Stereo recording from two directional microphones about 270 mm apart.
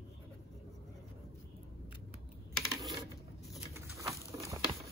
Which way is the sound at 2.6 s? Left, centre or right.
Centre.